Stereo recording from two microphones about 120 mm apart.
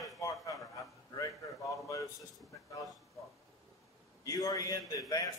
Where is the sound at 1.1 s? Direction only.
25° left (ahead or behind).